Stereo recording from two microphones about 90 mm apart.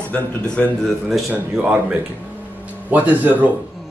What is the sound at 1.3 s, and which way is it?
A man's voice, 15° right (ahead or behind).